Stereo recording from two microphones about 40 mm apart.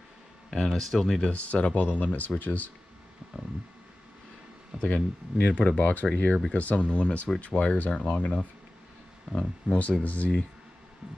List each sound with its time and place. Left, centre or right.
0.7 s speech: centre
1.3 s speech: left
4.8 s speech: left
5.8 s speech: left
6.1 s speech: left
9.3 s speech: centre
10.0 s speech: left